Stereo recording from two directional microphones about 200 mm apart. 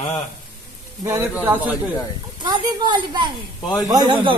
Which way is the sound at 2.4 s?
20° right (ahead or behind).